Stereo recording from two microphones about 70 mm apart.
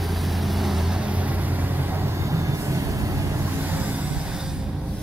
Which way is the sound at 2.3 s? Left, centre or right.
Right.